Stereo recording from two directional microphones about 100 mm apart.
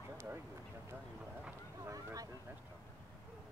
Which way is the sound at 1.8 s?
35° right (ahead or behind).